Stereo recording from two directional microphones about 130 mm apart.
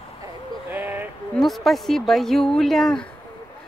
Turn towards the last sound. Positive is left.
turn(degrees=5)  # may be behind; listen again after turning